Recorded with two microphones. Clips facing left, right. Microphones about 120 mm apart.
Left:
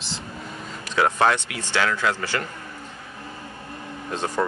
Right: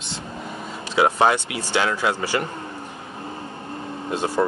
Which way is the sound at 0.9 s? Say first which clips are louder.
Right 2 dB; 15° right (ahead or behind).